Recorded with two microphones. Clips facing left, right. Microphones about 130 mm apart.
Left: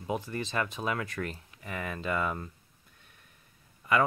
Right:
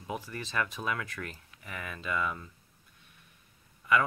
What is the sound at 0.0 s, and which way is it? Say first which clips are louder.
Speech: left 5 dB; 25° left (ahead or behind).